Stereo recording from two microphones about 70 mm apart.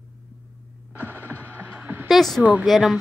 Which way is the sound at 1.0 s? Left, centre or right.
Right.